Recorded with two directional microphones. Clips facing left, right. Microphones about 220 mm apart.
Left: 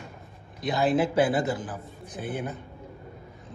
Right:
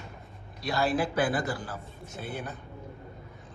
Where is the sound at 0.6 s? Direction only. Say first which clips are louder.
Left 4 dB; 20° left (ahead or behind).